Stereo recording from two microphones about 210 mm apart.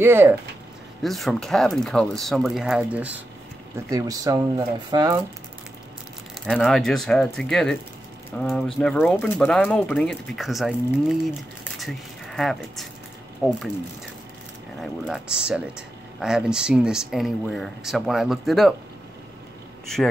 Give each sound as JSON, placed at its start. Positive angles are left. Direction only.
{"t": 0.0, "sound": "speech", "side_deg": -10}
{"t": 1.0, "sound": "speech", "side_deg": 0}
{"t": 6.4, "sound": "speech", "side_deg": 0}
{"t": 14.8, "sound": "speech", "side_deg": 0}